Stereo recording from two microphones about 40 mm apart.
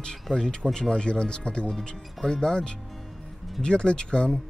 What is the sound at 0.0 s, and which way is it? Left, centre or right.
Speech, centre.